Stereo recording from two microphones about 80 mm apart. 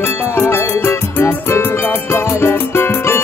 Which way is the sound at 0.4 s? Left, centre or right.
Left.